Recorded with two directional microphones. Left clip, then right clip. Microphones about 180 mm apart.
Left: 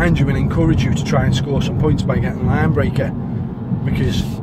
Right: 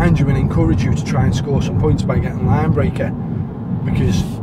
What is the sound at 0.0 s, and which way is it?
Speech, 15° left (ahead or behind).